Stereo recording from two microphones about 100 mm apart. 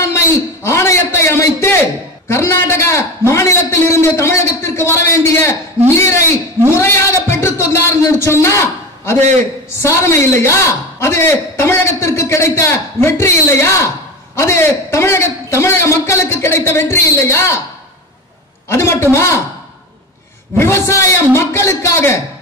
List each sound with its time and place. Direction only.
0.0 s a man's voice: 25° left (ahead or behind)
18.7 s a man's voice: 25° left (ahead or behind)
20.5 s a man's voice: 25° left (ahead or behind)